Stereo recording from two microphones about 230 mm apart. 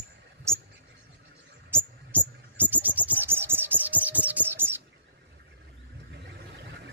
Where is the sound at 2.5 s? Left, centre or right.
Centre.